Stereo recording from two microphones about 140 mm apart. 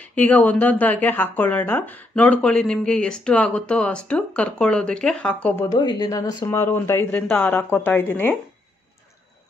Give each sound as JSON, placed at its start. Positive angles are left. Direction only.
{"t": 0.0, "sound": "a woman's voice", "side_deg": 10}
{"t": 5.8, "sound": "a woman's voice", "side_deg": 30}